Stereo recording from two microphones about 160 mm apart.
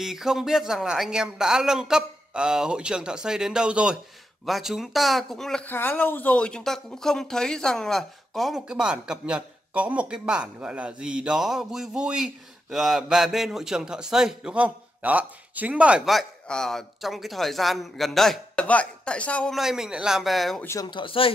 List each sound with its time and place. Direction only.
0.0 s speech: 5° right (ahead or behind)
20.6 s speech: 20° left (ahead or behind)
20.9 s speech: 35° left (ahead or behind)